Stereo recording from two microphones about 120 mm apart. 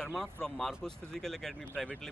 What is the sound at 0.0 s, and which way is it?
Speech, 5° left (ahead or behind).